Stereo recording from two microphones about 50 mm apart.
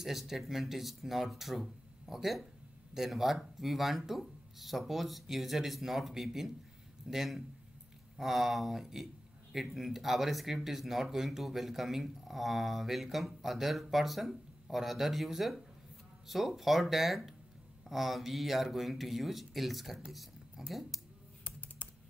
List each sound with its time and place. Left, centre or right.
0.0 s speech: centre
20.1 s a sound: centre
21.5 s computer keyboard: left